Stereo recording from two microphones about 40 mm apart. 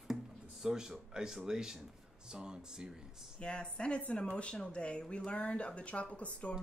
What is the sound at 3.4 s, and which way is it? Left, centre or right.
Speech, left.